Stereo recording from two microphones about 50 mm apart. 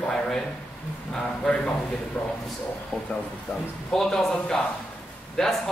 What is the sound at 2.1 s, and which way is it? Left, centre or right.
Speech, left.